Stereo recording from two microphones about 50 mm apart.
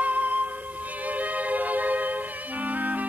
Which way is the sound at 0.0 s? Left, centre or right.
Right.